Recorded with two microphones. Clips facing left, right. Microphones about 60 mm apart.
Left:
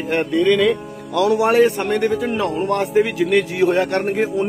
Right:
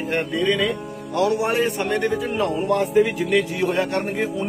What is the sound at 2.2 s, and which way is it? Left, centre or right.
A man's voice, left.